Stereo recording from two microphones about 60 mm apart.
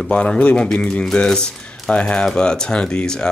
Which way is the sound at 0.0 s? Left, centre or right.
Centre.